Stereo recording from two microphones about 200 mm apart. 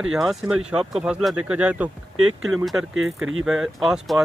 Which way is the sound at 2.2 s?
90° right.